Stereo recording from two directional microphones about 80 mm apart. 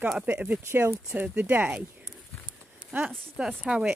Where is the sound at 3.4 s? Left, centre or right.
Centre.